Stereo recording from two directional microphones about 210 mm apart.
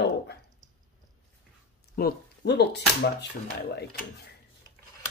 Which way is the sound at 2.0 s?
50° left (ahead or behind).